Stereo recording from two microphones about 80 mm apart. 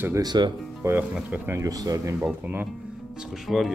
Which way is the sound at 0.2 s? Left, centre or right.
Right.